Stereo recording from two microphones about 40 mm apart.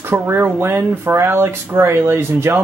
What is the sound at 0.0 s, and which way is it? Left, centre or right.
Speech, right.